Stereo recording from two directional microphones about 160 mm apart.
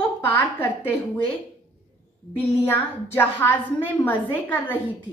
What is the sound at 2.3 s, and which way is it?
A woman's voice, 15° left (ahead or behind).